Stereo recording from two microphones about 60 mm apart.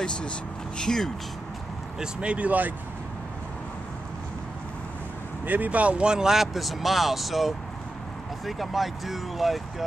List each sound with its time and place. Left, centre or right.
0.7 s speech: centre
2.0 s speech: centre
5.4 s speech: right; by 9.8 s centre